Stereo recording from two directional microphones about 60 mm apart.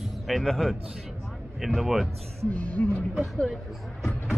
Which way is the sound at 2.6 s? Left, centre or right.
Left.